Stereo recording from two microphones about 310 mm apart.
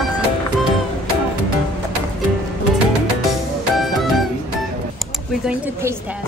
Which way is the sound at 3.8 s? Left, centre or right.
Centre.